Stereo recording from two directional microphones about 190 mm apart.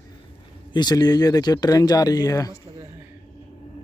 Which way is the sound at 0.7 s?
20° left (ahead or behind).